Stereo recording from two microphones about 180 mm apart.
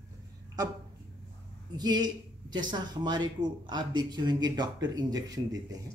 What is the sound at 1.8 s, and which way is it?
Speech, 20° right (ahead or behind).